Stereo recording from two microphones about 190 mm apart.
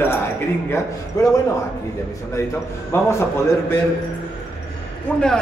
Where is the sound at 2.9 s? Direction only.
15° left (ahead or behind).